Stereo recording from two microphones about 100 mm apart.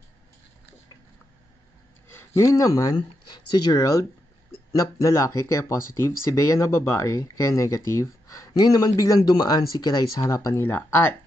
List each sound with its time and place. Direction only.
2.1 s speech: 30° left (ahead or behind)
3.7 s speech: 35° left (ahead or behind)